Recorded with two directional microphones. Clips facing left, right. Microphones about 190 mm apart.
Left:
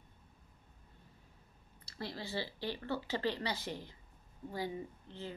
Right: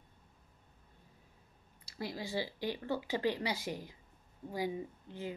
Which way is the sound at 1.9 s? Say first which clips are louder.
Right 2 dB; 10° right (ahead or behind).